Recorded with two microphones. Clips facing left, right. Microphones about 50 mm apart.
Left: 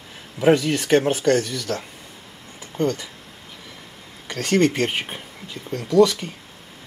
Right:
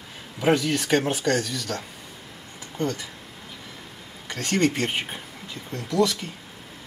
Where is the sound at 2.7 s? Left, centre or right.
Centre.